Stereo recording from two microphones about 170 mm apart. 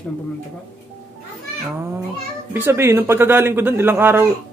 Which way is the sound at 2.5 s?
15° right (ahead or behind).